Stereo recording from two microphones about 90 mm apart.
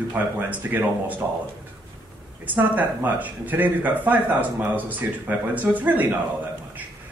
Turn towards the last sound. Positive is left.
turn(degrees=-20)  # may be behind; listen again after turning